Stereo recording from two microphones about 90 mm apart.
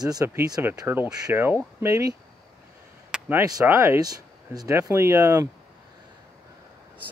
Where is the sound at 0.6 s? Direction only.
25° right (ahead or behind).